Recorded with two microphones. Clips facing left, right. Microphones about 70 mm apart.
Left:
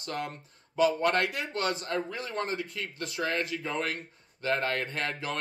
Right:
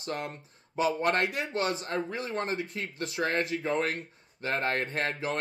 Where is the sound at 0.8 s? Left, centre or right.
Right.